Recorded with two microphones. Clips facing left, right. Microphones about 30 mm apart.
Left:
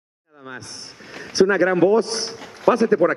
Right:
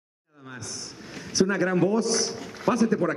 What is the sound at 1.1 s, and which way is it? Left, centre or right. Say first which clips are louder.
A man's voice: left 7 dB; left.